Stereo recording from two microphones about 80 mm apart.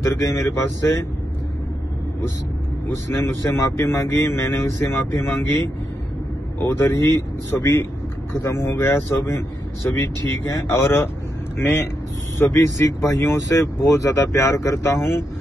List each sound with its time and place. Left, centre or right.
0.0 s a man's voice: left
3.1 s a man's voice: left
6.6 s a man's voice: left
12.4 s a man's voice: left